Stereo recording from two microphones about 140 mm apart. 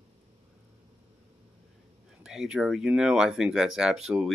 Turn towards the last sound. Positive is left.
turn(degrees=-5)  # may be behind; listen again after turning